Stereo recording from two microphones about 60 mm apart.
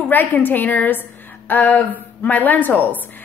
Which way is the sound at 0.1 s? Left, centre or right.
Left.